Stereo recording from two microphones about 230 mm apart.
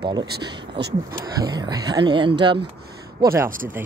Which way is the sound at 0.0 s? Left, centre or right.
Centre.